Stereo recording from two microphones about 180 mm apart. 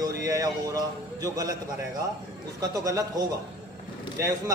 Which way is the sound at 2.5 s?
20° right (ahead or behind).